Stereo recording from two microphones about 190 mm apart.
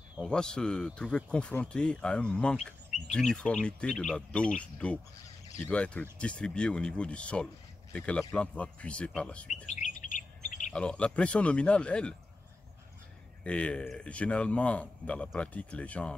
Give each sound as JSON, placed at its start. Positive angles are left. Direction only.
{"t": 0.2, "sound": "speech", "side_deg": 5}
{"t": 9.7, "sound": "bird", "side_deg": 45}
{"t": 10.7, "sound": "speech", "side_deg": 5}
{"t": 13.4, "sound": "speech", "side_deg": 5}